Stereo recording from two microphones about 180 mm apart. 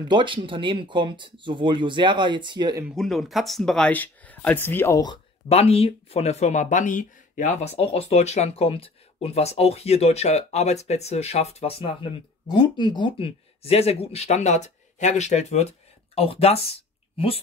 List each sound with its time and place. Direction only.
0.1 s speech: 25° right (ahead or behind)
3.0 s speech: centre (ahead or behind); by 7.7 s 45° left (ahead or behind)
7.7 s speech: 35° left (ahead or behind)